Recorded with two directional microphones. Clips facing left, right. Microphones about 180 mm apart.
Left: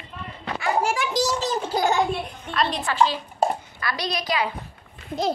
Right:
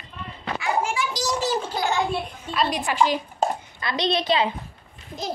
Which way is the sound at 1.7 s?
45° left (ahead or behind).